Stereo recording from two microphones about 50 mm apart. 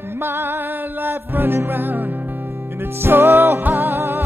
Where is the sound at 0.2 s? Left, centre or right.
Right.